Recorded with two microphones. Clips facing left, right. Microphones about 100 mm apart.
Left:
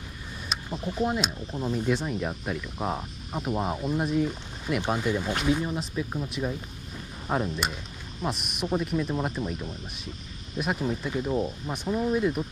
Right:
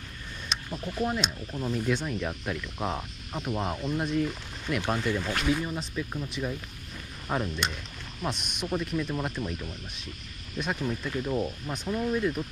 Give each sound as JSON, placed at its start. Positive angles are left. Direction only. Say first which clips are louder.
{"t": 0.7, "sound": "speech", "louder": "left 3 dB", "side_deg": 15}
{"t": 5.4, "sound": "speech", "louder": "left 2 dB", "side_deg": 5}